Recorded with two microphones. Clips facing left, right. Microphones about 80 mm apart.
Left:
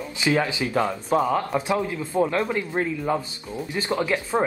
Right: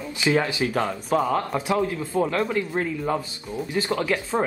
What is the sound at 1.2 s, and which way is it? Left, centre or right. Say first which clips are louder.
Speech: left 1 dB; centre.